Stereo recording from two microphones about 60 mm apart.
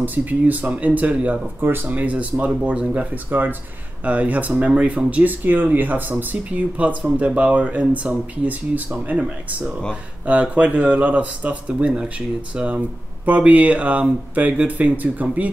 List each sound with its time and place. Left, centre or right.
0.0 s speech: right
1.6 s speech: right; by 3.1 s centre
3.3 s speech: right